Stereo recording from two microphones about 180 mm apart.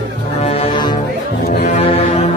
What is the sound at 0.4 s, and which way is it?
Music, 35° left (ahead or behind).